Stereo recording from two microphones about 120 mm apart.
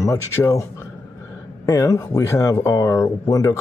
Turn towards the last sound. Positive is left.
turn(degrees=30)  # may be behind; listen again after turning